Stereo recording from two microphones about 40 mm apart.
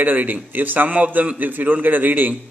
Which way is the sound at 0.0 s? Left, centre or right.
Right.